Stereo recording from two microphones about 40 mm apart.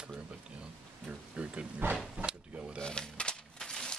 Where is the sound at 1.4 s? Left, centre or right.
Right.